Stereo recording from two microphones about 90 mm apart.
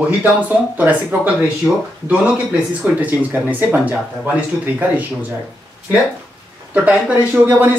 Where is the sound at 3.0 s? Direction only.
20° right (ahead or behind).